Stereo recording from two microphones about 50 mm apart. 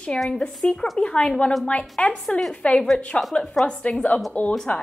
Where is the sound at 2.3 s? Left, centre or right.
Centre.